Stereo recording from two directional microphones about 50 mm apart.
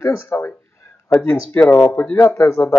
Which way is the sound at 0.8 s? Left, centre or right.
Left.